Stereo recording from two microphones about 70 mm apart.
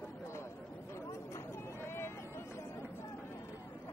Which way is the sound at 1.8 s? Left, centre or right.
Left.